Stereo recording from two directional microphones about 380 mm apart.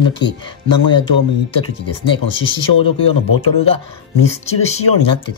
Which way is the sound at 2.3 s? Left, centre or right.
Centre.